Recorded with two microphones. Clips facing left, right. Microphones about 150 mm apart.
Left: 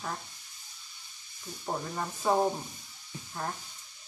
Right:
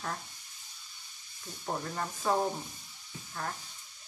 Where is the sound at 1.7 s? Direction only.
10° left (ahead or behind).